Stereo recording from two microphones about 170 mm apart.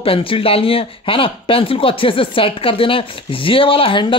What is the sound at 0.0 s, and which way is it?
Speech, 30° left (ahead or behind).